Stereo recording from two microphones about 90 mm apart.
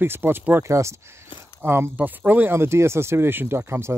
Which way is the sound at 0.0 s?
25° right (ahead or behind).